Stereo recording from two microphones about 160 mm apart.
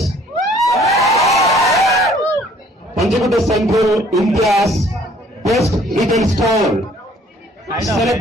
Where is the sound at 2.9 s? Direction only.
Centre (ahead or behind).